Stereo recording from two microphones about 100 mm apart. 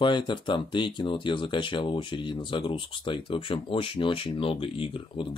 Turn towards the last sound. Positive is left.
turn(degrees=60)  # may be behind; listen again after turning